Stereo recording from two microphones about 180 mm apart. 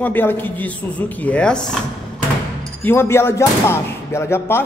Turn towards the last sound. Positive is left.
turn(degrees=15)  # may be behind; listen again after turning